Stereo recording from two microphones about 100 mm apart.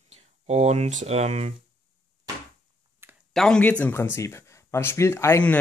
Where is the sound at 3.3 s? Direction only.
5° left (ahead or behind).